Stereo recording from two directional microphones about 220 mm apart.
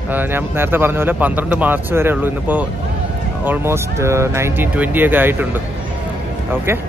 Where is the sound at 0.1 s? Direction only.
10° right (ahead or behind).